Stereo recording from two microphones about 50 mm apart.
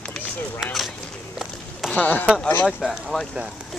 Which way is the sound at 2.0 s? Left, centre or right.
Left.